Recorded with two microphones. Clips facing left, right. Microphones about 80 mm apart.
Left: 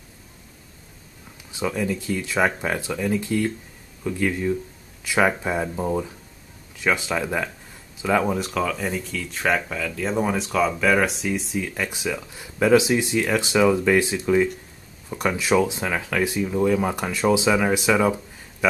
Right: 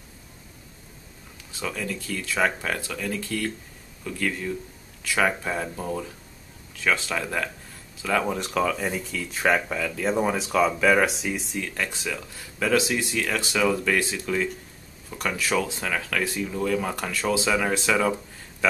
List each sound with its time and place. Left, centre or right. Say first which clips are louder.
1.5 s speech: left 6 dB; centre
8.3 s speech: left 1 dB; centre